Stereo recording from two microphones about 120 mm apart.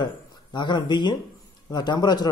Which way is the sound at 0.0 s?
40° left (ahead or behind).